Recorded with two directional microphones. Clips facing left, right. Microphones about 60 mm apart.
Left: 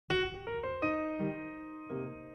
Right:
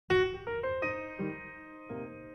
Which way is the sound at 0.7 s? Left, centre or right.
Right.